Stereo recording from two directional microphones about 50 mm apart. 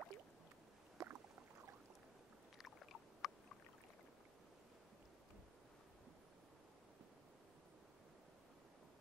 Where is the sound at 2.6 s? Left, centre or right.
Centre.